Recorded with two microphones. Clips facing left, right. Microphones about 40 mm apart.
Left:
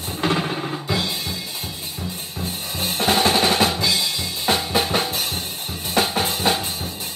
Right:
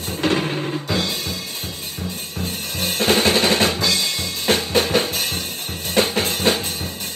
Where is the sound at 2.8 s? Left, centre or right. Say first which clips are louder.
Right 1 dB; right.